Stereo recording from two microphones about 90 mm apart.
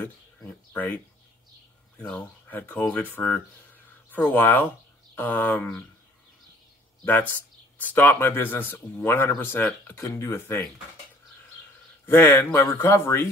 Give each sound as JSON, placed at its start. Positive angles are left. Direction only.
{"t": 0.0, "sound": "a sound", "side_deg": 15}
{"t": 2.0, "sound": "speech", "side_deg": 15}
{"t": 7.8, "sound": "speech", "side_deg": 20}
{"t": 12.1, "sound": "speech", "side_deg": 25}